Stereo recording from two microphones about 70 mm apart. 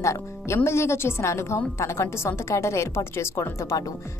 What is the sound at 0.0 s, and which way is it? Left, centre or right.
A woman's voice, left.